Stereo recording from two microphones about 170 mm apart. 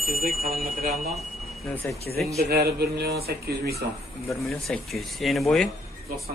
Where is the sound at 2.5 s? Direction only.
70° right (ahead or behind).